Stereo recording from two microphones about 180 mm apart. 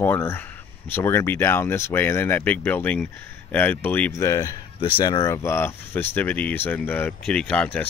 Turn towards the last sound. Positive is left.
turn(degrees=5)  # may be behind; listen again after turning